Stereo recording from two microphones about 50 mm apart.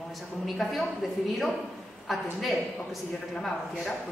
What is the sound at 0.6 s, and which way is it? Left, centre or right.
Speech, centre.